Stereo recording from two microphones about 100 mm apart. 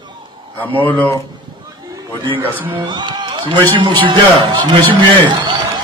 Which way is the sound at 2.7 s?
50° right (ahead or behind).